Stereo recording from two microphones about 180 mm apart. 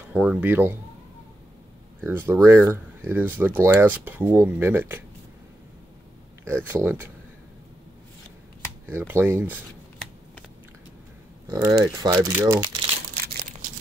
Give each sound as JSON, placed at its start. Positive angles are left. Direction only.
{"t": 0.1, "sound": "speech", "side_deg": -5}
{"t": 2.0, "sound": "speech", "side_deg": -10}
{"t": 6.4, "sound": "speech", "side_deg": -10}
{"t": 8.8, "sound": "speech", "side_deg": -10}
{"t": 11.4, "sound": "speech", "side_deg": -20}